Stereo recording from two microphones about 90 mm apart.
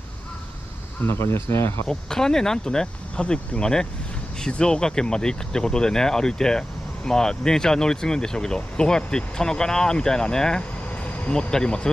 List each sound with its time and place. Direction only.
1.0 s speech: 25° left (ahead or behind)
1.9 s speech: 5° left (ahead or behind)